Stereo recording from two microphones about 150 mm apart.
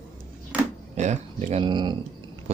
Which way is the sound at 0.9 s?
50° right (ahead or behind).